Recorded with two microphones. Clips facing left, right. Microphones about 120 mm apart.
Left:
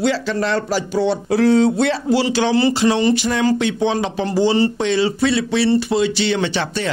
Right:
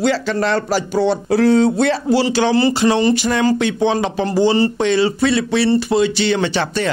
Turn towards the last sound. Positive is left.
turn(degrees=-50)  # may be behind; listen again after turning